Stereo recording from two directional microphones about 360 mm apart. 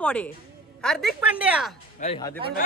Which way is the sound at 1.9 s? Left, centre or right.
Centre.